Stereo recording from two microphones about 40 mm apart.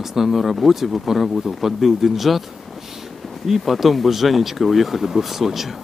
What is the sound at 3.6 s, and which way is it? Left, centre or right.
Speech, centre.